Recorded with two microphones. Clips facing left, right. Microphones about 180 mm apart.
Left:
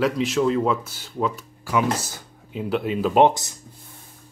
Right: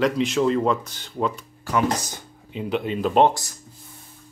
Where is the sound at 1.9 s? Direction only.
15° right (ahead or behind).